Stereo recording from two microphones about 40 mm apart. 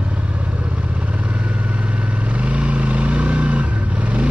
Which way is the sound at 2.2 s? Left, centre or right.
Right.